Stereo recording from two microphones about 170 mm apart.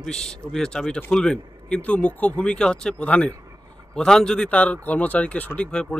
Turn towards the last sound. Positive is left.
turn(degrees=5)  # may be behind; listen again after turning